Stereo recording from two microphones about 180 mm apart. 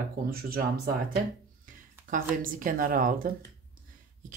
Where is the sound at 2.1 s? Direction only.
50° right (ahead or behind).